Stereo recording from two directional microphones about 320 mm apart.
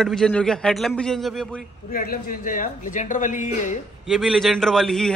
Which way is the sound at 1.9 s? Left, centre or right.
Left.